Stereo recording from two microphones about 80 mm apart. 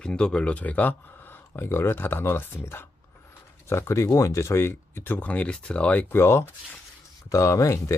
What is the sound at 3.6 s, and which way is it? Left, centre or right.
Speech, left.